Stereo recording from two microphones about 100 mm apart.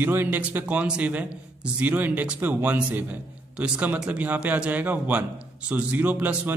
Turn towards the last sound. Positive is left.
turn(degrees=-15)  # may be behind; listen again after turning